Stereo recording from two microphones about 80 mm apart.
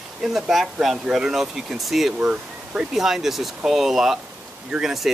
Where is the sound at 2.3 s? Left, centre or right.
Centre.